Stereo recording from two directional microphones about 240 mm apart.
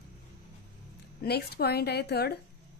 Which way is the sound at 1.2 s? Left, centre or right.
Left.